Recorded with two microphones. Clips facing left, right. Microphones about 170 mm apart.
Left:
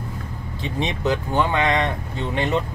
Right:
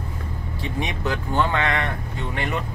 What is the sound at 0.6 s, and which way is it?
Speech, 20° left (ahead or behind).